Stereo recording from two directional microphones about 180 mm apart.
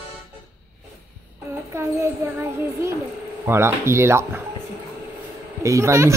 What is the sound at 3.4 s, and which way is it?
Speech, 15° right (ahead or behind).